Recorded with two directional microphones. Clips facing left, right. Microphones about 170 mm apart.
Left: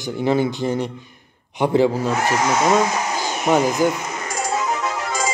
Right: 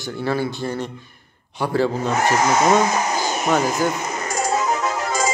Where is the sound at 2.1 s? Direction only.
45° right (ahead or behind).